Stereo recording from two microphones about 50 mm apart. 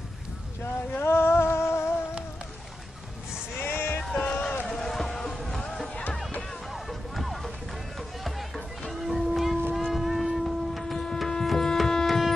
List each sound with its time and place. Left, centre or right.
0.9 s music: left
3.6 s music: left
4.2 s run: left
4.6 s music: centre
9.8 s a sound: centre
11.1 s music: centre